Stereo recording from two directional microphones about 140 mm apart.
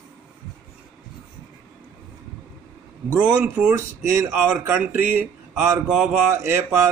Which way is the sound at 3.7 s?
20° right (ahead or behind).